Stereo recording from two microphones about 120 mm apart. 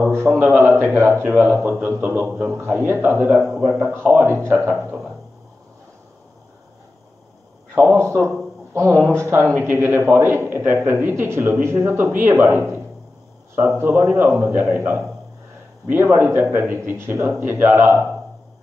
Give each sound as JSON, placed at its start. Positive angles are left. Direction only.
{"t": 0.4, "sound": "a man's voice", "side_deg": -20}
{"t": 3.4, "sound": "a man's voice", "side_deg": -5}
{"t": 7.7, "sound": "a man's voice", "side_deg": -15}